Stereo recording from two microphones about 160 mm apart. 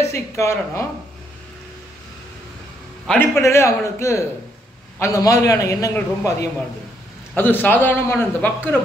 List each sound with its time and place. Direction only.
0.0 s a man's voice: 15° left (ahead or behind)
3.1 s a man's voice: 15° left (ahead or behind)
7.3 s a man's voice: 10° left (ahead or behind)